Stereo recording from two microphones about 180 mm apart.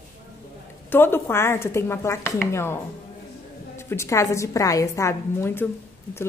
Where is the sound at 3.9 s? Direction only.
15° left (ahead or behind).